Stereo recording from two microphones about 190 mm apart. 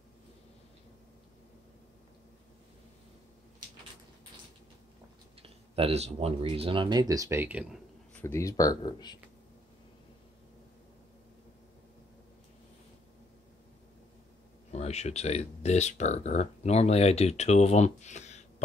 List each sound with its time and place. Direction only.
5.4 s speech: 30° right (ahead or behind); by 7.8 s 10° right (ahead or behind)
8.1 s speech: 10° left (ahead or behind)
14.7 s speech: 35° left (ahead or behind)